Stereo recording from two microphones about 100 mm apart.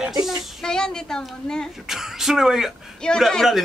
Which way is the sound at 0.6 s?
5° left (ahead or behind).